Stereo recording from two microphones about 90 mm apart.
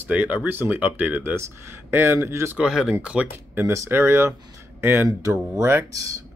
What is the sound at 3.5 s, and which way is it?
Speech, 30° right (ahead or behind).